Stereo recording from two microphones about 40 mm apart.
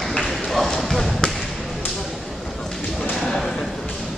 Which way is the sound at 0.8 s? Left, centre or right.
Centre.